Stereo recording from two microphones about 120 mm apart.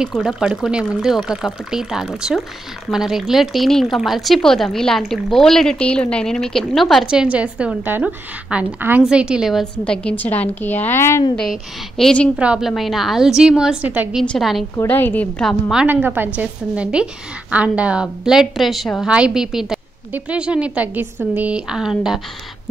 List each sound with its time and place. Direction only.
0.1 s a woman's voice: centre (ahead or behind); by 11.2 s 20° left (ahead or behind)
12.0 s a woman's voice: 10° left (ahead or behind)
12.4 s a woman's voice: 5° right (ahead or behind)
14.2 s speech: 5° left (ahead or behind)
14.8 s a woman's voice: 15° left (ahead or behind)
15.4 s a woman's voice: 5° right (ahead or behind)